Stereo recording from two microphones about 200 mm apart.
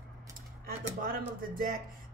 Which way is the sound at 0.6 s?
45° right (ahead or behind).